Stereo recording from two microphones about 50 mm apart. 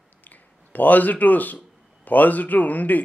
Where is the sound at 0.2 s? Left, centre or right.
Left.